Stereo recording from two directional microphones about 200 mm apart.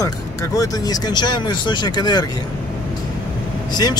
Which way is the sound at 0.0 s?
15° left (ahead or behind).